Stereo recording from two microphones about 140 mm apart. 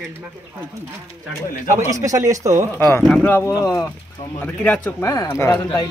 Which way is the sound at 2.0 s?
25° right (ahead or behind).